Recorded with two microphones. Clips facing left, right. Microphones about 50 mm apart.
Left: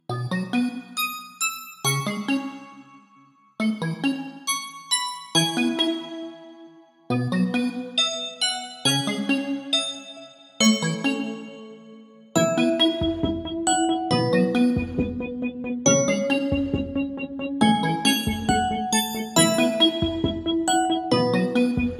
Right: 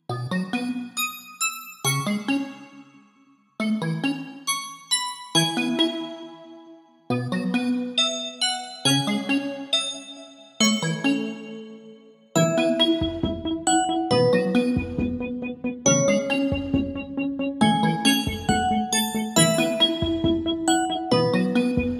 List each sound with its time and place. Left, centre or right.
0.0 s music: centre
3.5 s music: centre
7.1 s music: centre
9.4 s music: centre
10.6 s music: centre
12.4 s music: centre